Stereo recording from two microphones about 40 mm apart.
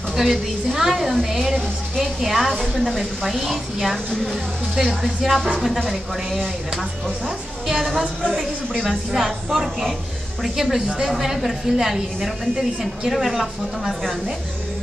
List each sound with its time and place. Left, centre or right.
0.1 s a woman's voice: centre